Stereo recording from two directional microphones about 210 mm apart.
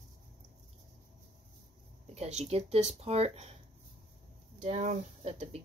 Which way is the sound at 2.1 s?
30° right (ahead or behind).